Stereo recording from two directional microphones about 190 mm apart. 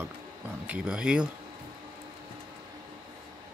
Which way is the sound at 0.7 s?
5° right (ahead or behind).